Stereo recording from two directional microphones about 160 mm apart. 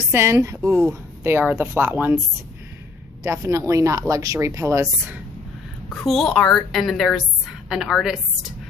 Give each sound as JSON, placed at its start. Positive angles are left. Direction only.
{"t": 0.1, "sound": "speech", "side_deg": -15}
{"t": 3.3, "sound": "speech", "side_deg": -20}
{"t": 5.9, "sound": "a woman's voice", "side_deg": 0}